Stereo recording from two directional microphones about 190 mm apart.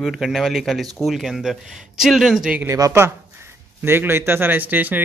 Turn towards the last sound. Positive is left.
turn(degrees=-10)  # may be behind; listen again after turning